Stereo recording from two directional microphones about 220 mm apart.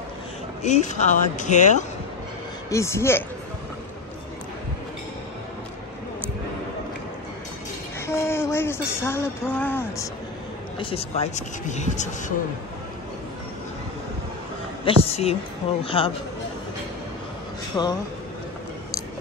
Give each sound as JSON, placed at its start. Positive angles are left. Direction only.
{"t": 0.7, "sound": "speech", "side_deg": 35}
{"t": 2.7, "sound": "speech", "side_deg": 15}
{"t": 8.1, "sound": "speech", "side_deg": 10}
{"t": 10.8, "sound": "speech", "side_deg": 25}
{"t": 14.9, "sound": "a woman's voice", "side_deg": 25}
{"t": 17.8, "sound": "speech", "side_deg": 15}